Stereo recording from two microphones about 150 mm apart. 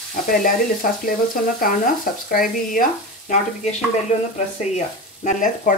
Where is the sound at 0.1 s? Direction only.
70° left (ahead or behind).